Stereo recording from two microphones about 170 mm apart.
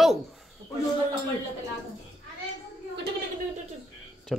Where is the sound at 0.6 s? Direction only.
25° right (ahead or behind).